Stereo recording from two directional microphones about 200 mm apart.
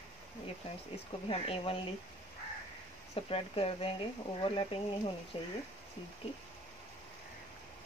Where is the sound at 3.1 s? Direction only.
30° left (ahead or behind).